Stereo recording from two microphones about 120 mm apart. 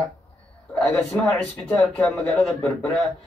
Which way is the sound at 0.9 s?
20° left (ahead or behind).